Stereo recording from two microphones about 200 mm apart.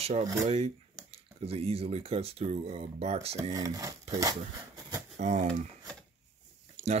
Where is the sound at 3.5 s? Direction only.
15° right (ahead or behind).